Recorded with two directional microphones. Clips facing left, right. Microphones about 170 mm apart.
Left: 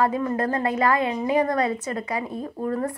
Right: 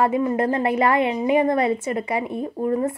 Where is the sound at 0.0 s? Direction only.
20° right (ahead or behind).